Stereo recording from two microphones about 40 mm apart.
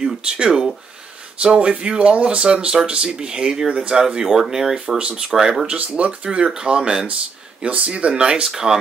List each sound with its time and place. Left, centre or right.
0.2 s speech: right
5.9 s speech: right
8.5 s speech: centre